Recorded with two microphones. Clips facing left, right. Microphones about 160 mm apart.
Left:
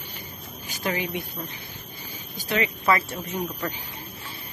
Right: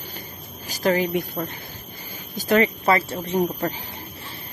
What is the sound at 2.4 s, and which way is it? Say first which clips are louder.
Speech: right 8 dB; 45° right (ahead or behind).